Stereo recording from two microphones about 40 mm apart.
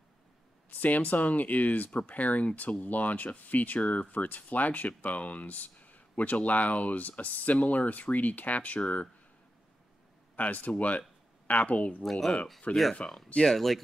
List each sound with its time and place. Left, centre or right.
0.7 s speech: left
10.3 s speech: left
12.0 s speech: centre
12.7 s speech: left
13.0 s speech: centre